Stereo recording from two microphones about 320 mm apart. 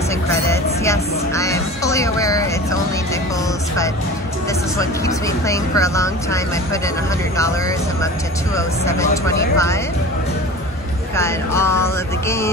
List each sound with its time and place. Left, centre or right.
0.3 s speech: centre
4.7 s speech: centre
8.5 s speech: centre
11.1 s speech: centre